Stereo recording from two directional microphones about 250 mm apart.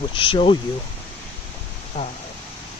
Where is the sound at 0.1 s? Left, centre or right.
Left.